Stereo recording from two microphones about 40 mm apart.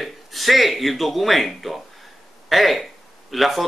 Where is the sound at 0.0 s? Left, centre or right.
Centre.